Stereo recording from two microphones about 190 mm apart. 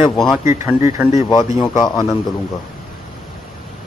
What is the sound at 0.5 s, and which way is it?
Speech, 15° right (ahead or behind).